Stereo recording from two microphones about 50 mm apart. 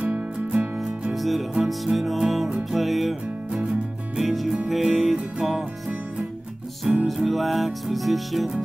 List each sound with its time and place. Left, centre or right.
0.0 s music: centre
1.1 s music: centre
6.8 s music: centre
7.2 s music: centre